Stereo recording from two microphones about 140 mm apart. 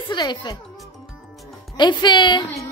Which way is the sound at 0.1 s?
30° left (ahead or behind).